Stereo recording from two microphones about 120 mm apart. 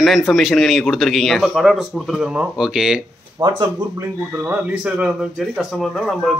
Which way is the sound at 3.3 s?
35° right (ahead or behind).